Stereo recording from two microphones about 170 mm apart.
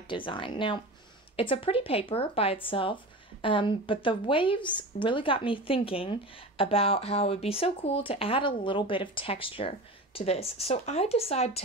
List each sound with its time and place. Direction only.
0.1 s a woman's voice: 30° left (ahead or behind)